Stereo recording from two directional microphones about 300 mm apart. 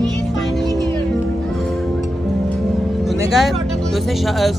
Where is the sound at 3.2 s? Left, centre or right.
Centre.